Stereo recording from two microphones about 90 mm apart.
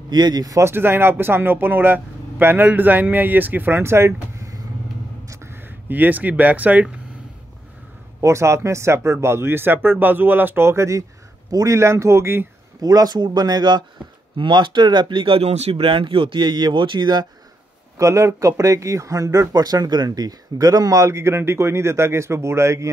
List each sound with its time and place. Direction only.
0.1 s speech: 50° right (ahead or behind)
0.6 s speech: 25° right (ahead or behind)
8.2 s speech: 35° right (ahead or behind)
12.8 s speech: 45° right (ahead or behind)
17.9 s speech: 35° right (ahead or behind)